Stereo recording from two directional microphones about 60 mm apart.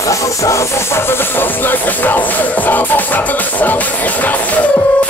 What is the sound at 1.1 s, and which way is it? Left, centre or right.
Music, left.